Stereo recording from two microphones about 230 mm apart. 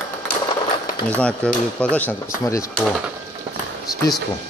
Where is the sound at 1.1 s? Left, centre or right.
Centre.